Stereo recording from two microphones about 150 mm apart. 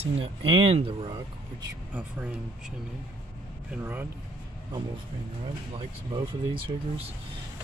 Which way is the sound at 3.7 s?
15° right (ahead or behind).